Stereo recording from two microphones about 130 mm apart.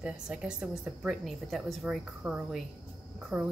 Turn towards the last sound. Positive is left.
turn(degrees=-10)  # may be behind; listen again after turning